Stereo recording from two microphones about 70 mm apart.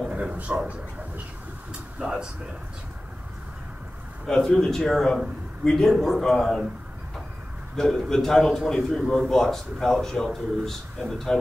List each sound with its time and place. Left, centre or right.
0.1 s a sound: centre
2.0 s speech: centre
4.3 s a man's voice: centre
7.7 s a man's voice: centre